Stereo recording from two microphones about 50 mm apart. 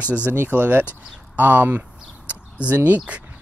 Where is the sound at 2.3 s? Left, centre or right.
Right.